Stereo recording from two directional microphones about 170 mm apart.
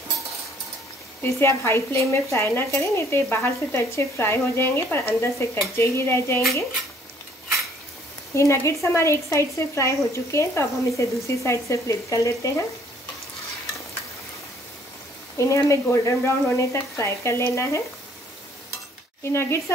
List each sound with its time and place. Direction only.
1.2 s speech: 15° left (ahead or behind)
8.4 s speech: 15° left (ahead or behind)
15.3 s speech: 20° left (ahead or behind)
19.2 s speech: 15° left (ahead or behind)